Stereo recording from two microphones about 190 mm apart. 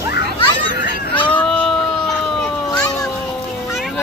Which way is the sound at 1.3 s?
5° left (ahead or behind).